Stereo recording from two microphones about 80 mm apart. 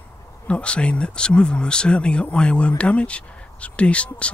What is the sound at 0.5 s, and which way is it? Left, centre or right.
Speech, centre.